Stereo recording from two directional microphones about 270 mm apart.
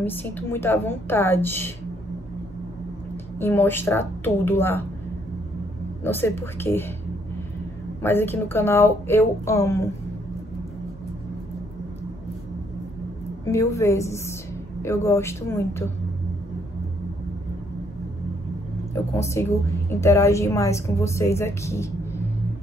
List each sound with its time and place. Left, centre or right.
0.0 s a woman's voice: centre
3.3 s a woman's voice: centre
6.0 s a woman's voice: centre
8.0 s a woman's voice: centre
13.5 s a woman's voice: centre
19.1 s a woman's voice: centre